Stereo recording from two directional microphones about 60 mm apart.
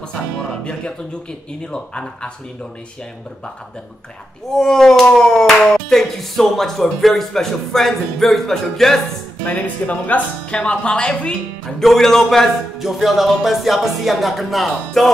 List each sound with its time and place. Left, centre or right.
0.5 s speech: centre
4.6 s speech: centre
9.5 s speech: left; by 12.4 s centre
12.7 s speech: centre